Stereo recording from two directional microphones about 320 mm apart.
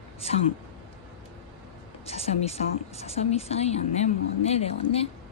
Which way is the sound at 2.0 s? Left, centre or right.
Centre.